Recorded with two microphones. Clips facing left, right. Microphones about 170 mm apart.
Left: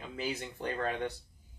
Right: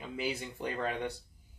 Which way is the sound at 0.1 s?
10° right (ahead or behind).